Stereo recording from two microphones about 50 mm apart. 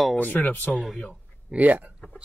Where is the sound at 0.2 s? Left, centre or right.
Left.